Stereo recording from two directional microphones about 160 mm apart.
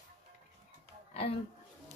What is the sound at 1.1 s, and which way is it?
Speech, 40° left (ahead or behind).